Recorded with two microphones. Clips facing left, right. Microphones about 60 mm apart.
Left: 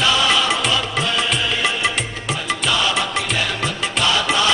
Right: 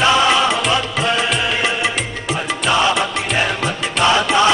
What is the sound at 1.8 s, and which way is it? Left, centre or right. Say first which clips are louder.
Music: right 1 dB; centre.